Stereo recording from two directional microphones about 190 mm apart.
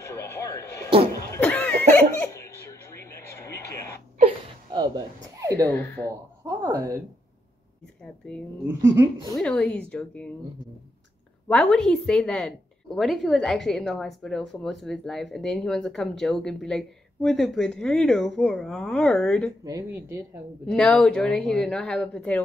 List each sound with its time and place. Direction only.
0.1 s television: 15° left (ahead or behind)
1.3 s cough: 10° left (ahead or behind)
4.7 s a sound: 20° right (ahead or behind)
5.7 s speech: 10° left (ahead or behind)
6.4 s speech: 10° right (ahead or behind)
8.9 s speech: 15° right (ahead or behind)
9.4 s a woman's voice: 5° left (ahead or behind)
11.4 s a woman's voice: 5° left (ahead or behind)
19.6 s speech: 15° right (ahead or behind)
20.6 s a woman's voice: 5° left (ahead or behind)